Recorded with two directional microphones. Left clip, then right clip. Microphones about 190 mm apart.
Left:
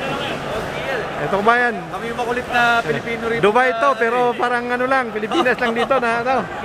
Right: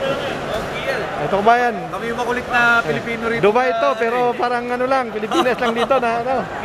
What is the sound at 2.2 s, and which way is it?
Speech, 20° right (ahead or behind).